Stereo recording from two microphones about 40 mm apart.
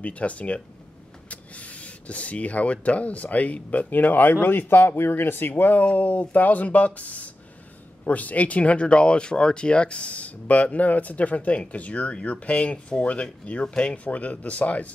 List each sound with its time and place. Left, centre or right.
0.0 s speech: left
5.6 s speech: left